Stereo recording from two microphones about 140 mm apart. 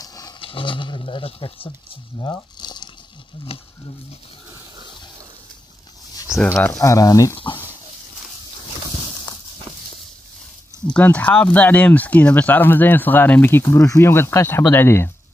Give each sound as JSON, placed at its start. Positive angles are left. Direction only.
{"t": 0.0, "sound": "a sound", "side_deg": 25}
{"t": 0.4, "sound": "speech", "side_deg": 40}
{"t": 3.5, "sound": "speech", "side_deg": 45}
{"t": 6.4, "sound": "speech", "side_deg": 10}
{"t": 7.3, "sound": "speech", "side_deg": 35}
{"t": 10.9, "sound": "speech", "side_deg": 10}